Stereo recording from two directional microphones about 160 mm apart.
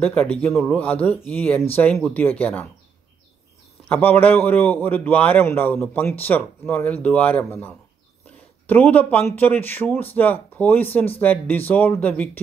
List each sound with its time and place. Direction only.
0.0 s a man's voice: 10° left (ahead or behind)
3.9 s a man's voice: 10° left (ahead or behind)